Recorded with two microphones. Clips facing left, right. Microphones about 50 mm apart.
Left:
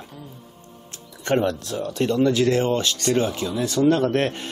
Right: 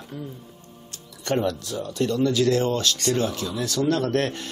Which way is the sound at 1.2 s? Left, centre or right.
Left.